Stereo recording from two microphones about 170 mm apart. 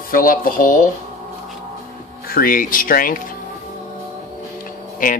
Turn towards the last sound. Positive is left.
turn(degrees=50)  # may be behind; listen again after turning